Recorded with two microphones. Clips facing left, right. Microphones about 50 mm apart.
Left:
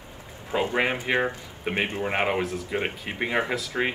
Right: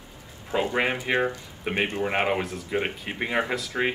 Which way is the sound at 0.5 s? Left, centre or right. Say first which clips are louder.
Even; centre.